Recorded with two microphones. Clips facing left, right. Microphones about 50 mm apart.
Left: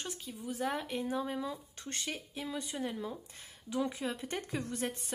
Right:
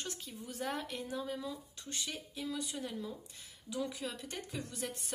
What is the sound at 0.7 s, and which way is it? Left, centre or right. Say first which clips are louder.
Speech: left 4 dB; left.